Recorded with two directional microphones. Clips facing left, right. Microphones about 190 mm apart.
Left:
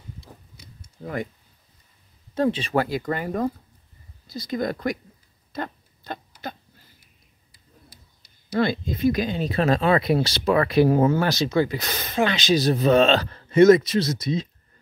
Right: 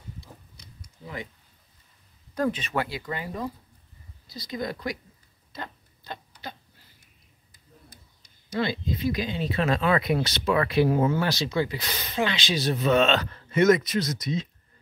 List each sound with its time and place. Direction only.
1.0 s speech: 50° left (ahead or behind)
2.3 s speech: 25° left (ahead or behind); by 4.9 s 50° left (ahead or behind)
5.5 s a sound: 50° left (ahead or behind)
8.5 s speech: 50° left (ahead or behind); by 14.5 s 30° left (ahead or behind)